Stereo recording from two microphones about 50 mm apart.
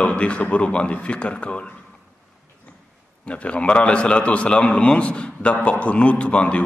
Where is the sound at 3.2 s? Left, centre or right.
Left.